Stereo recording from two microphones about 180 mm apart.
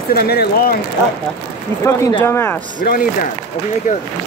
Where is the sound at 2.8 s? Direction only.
55° left (ahead or behind).